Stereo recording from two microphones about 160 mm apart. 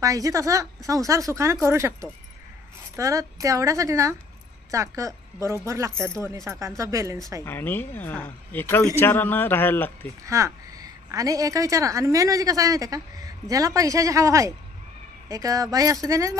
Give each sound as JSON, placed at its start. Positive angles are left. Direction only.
{"t": 0.0, "sound": "a woman's voice", "side_deg": -20}
{"t": 7.4, "sound": "speech", "side_deg": 15}
{"t": 10.2, "sound": "a woman's voice", "side_deg": -20}